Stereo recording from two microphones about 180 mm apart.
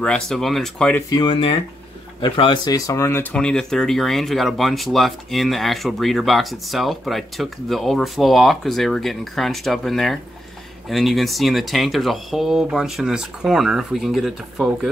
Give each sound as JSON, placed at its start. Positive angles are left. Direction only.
{"t": 0.0, "sound": "speech", "side_deg": 5}
{"t": 1.1, "sound": "speech", "side_deg": 30}